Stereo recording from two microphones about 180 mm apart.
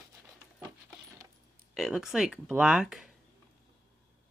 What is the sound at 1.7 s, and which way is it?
Speech, centre (ahead or behind).